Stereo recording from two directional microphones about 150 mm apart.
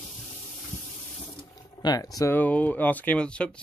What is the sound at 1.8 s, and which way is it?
Speech, 25° left (ahead or behind).